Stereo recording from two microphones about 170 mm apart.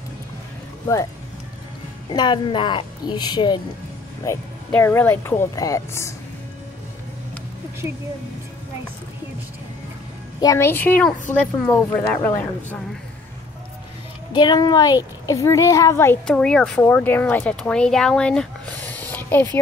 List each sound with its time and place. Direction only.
2.0 s a woman's voice: 25° left (ahead or behind)
4.6 s a woman's voice: 10° left (ahead or behind)
10.4 s a woman's voice: 15° left (ahead or behind)
14.3 s a woman's voice: 25° left (ahead or behind)
16.3 s speech: 5° left (ahead or behind)